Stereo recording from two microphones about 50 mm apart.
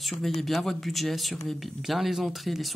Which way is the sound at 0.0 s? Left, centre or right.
Centre.